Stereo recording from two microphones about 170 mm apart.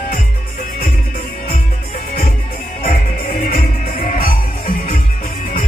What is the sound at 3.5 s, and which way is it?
Music, 55° left (ahead or behind).